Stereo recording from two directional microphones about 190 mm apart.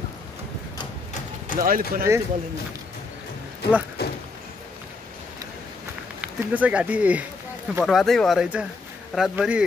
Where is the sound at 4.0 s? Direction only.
55° left (ahead or behind).